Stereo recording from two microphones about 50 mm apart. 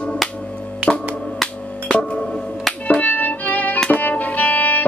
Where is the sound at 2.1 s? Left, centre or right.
Centre.